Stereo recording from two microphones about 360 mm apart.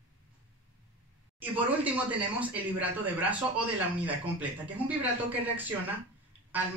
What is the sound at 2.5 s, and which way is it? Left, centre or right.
Speech, centre.